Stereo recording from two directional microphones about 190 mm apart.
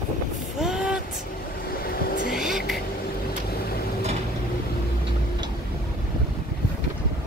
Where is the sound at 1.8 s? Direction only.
50° left (ahead or behind).